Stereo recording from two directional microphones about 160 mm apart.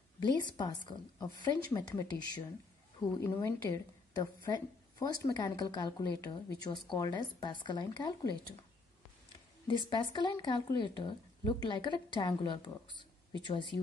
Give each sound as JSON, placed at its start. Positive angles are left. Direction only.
{"t": 0.2, "sound": "a woman's voice", "side_deg": 30}
{"t": 9.8, "sound": "speech", "side_deg": 30}